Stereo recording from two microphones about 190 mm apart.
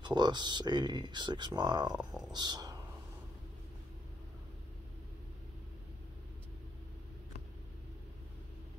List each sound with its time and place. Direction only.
0.0 s speech: 25° right (ahead or behind)
2.0 s a sound: 5° right (ahead or behind)
2.3 s speech: 20° right (ahead or behind)